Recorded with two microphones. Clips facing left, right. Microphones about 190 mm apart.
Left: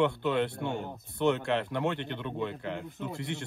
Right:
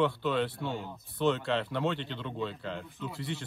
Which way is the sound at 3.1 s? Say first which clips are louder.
Even; 55° left (ahead or behind).